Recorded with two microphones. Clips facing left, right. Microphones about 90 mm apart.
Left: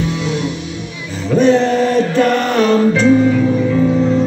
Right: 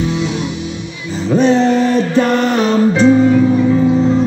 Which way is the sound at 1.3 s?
20° right (ahead or behind).